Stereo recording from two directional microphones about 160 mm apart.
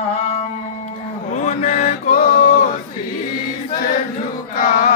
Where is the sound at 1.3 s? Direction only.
50° left (ahead or behind).